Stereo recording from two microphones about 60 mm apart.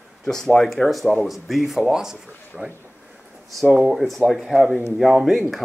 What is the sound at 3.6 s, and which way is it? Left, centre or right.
Speech, right.